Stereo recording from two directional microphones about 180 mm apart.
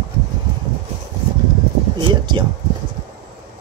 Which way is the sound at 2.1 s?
25° right (ahead or behind).